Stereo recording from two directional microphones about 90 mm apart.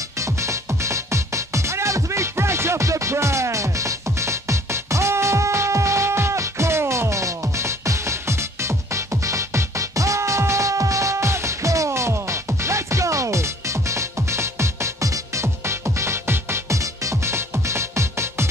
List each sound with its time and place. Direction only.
0.2 s music: 35° right (ahead or behind)